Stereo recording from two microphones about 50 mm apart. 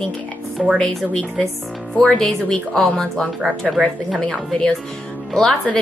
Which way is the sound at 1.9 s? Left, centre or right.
Centre.